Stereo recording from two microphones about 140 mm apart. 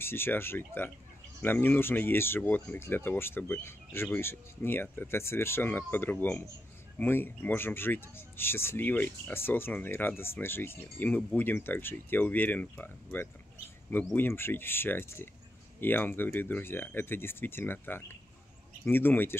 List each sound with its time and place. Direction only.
0.0 s speech: 15° left (ahead or behind)